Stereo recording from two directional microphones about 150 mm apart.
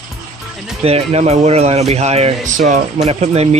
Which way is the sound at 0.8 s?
40° right (ahead or behind).